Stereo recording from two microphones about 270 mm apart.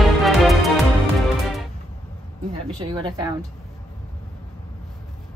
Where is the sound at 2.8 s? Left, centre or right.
Centre.